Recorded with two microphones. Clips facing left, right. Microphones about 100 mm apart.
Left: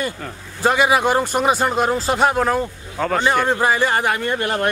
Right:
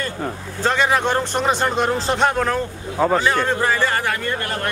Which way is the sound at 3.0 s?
15° right (ahead or behind).